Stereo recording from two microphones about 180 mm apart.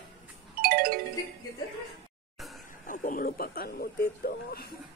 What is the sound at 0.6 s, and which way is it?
Music, 55° right (ahead or behind).